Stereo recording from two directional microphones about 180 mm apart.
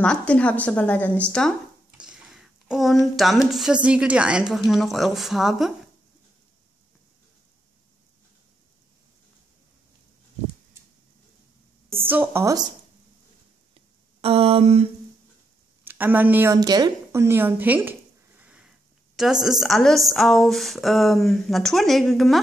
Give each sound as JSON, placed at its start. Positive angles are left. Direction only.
{"t": 0.0, "sound": "a woman's voice", "side_deg": 5}
{"t": 2.0, "sound": "speech", "side_deg": -5}
{"t": 12.0, "sound": "a woman's voice", "side_deg": -10}
{"t": 13.7, "sound": "a sound", "side_deg": -35}
{"t": 15.8, "sound": "a woman's voice", "side_deg": -10}
{"t": 18.4, "sound": "sniff", "side_deg": -5}
{"t": 19.1, "sound": "speech", "side_deg": 0}